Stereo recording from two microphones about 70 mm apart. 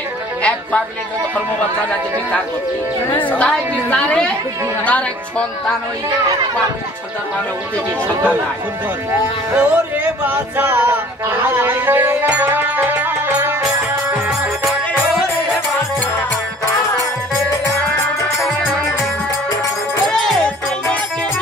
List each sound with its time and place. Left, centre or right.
3.3 s a woman's voice: centre
9.6 s a sound: right
11.6 s music: right
20.1 s music: centre